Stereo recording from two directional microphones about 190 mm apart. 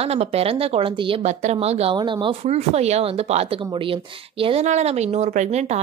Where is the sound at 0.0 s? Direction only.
35° right (ahead or behind).